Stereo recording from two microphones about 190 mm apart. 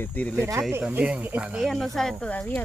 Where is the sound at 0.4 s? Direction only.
15° right (ahead or behind).